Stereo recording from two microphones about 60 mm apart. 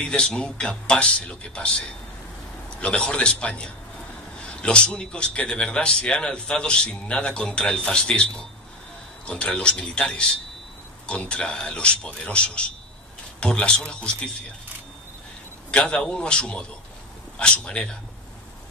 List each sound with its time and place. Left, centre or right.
0.0 s a man's voice: centre
15.7 s a man's voice: centre